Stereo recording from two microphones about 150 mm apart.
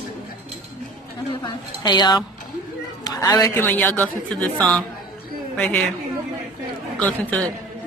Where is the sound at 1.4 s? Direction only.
30° left (ahead or behind); by 5.8 s 5° left (ahead or behind).